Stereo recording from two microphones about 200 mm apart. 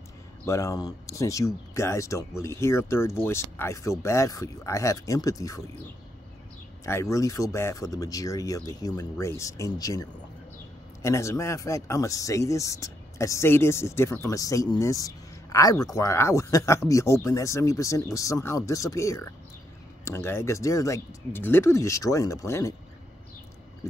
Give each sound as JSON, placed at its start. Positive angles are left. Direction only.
{"t": 0.5, "sound": "speech", "side_deg": 15}
{"t": 6.9, "sound": "speech", "side_deg": 15}